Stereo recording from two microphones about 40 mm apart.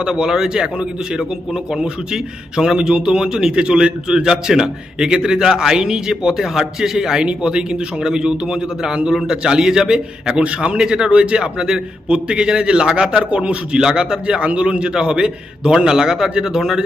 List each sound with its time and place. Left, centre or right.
0.0 s a man's voice: centre
2.5 s a man's voice: centre
10.4 s a man's voice: right
13.7 s a man's voice: centre